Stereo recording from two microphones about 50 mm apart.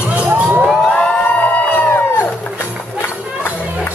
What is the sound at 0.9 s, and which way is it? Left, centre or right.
Crowd, left.